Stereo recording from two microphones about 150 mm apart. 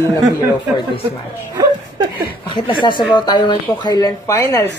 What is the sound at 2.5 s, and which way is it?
Speech, 30° left (ahead or behind).